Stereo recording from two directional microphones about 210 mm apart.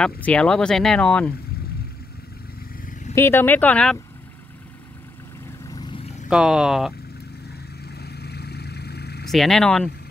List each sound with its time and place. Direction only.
0.0 s speech: 5° left (ahead or behind)
2.8 s vehicle: 35° left (ahead or behind)
3.2 s speech: 10° left (ahead or behind)
5.7 s vehicle: 20° left (ahead or behind)
6.2 s speech: 5° right (ahead or behind)
7.8 s vehicle: 50° left (ahead or behind)
9.2 s speech: centre (ahead or behind)